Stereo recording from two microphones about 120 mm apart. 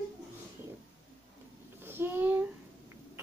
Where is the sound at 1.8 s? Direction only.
15° right (ahead or behind).